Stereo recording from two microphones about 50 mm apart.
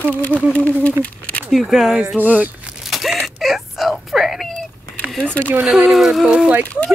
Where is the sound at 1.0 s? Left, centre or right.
Left.